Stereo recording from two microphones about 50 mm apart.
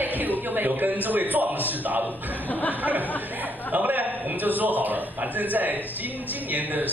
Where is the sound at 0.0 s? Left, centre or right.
Right.